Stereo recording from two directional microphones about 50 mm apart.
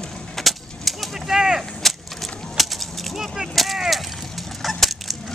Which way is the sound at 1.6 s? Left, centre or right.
Centre.